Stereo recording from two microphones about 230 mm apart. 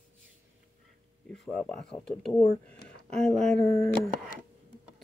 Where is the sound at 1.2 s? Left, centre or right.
Centre.